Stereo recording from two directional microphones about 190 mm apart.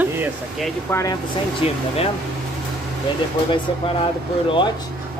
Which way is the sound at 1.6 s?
30° left (ahead or behind).